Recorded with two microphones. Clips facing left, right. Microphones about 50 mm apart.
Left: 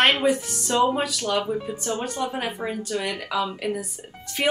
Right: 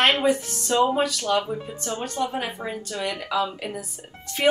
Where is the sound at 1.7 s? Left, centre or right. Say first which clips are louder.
Left 2 dB; centre.